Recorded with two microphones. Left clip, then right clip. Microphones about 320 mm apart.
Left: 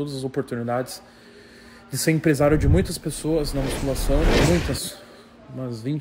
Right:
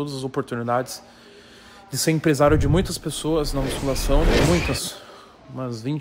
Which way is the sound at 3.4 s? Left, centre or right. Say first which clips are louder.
Right 1 dB; centre.